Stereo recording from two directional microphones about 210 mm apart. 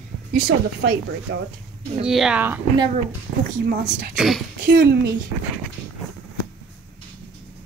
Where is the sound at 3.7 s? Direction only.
45° right (ahead or behind).